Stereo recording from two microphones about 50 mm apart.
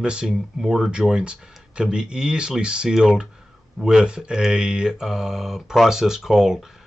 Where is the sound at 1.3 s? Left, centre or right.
Centre.